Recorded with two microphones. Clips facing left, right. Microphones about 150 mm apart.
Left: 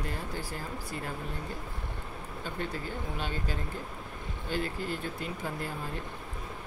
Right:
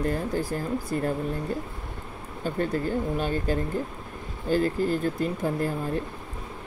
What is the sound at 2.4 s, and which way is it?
Speech, 45° right (ahead or behind).